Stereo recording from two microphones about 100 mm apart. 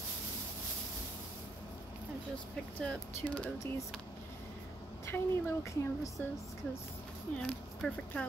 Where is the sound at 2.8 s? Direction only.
10° left (ahead or behind).